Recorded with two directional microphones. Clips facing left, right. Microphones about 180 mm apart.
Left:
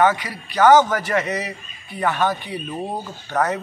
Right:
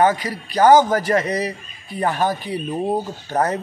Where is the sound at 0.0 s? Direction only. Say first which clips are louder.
Right 1 dB; 40° right (ahead or behind).